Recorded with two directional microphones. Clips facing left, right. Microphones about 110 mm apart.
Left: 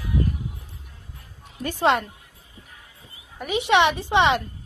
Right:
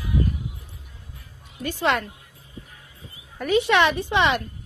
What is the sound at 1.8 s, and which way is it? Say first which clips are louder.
Speech: left 3 dB; 30° left (ahead or behind).